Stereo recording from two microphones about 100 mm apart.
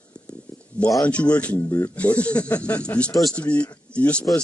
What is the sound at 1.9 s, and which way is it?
Speech, 15° left (ahead or behind).